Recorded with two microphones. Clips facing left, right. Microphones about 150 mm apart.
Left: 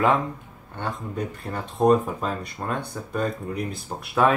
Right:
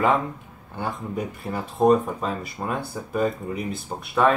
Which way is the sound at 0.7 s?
5° right (ahead or behind).